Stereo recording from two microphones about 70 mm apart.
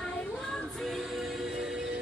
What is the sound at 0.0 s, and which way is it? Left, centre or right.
Music, centre.